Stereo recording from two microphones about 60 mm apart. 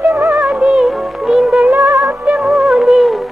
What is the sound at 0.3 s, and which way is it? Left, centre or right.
Music, centre.